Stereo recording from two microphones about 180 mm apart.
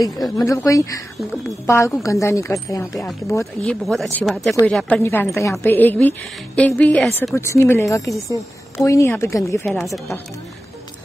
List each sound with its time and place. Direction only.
0.0 s a woman's voice: 20° left (ahead or behind)
2.0 s a woman's voice: 15° left (ahead or behind)
3.8 s a woman's voice: centre (ahead or behind)